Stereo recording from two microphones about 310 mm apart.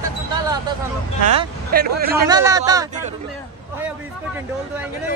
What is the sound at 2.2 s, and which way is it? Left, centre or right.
Speech, centre.